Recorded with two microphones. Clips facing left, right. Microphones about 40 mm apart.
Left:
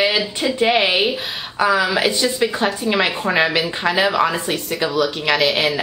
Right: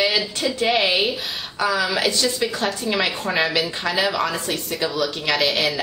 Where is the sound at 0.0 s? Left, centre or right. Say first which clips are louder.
Left 3 dB; centre.